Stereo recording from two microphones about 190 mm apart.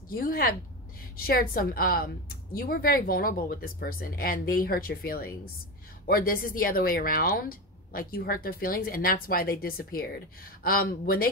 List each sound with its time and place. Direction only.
0.1 s a woman's voice: 50° left (ahead or behind)